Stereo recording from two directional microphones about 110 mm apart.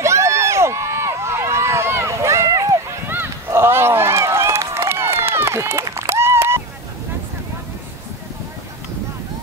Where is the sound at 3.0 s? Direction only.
20° right (ahead or behind).